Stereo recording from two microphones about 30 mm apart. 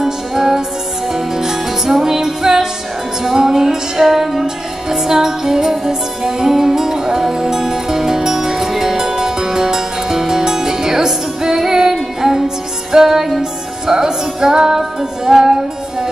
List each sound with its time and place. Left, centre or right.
0.0 s music: centre